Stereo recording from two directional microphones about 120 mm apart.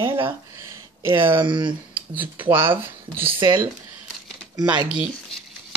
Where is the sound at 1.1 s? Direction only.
45° right (ahead or behind).